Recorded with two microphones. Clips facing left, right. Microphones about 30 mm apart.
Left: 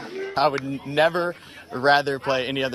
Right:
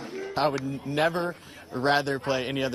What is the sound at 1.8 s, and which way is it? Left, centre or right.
Speech, left.